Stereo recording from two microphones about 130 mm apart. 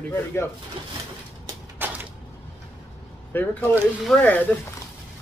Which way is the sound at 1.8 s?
15° right (ahead or behind).